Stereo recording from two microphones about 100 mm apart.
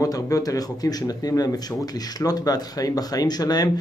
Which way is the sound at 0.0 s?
35° left (ahead or behind).